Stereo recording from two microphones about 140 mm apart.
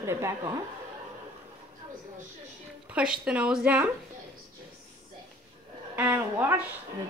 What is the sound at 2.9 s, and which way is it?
Speech, 5° right (ahead or behind).